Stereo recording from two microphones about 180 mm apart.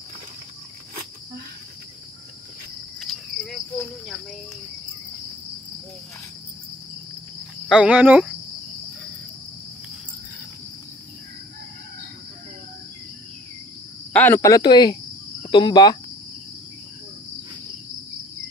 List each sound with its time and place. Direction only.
3.4 s cricket: 5° left (ahead or behind)
7.6 s speech: 5° right (ahead or behind)
14.1 s speech: 10° left (ahead or behind)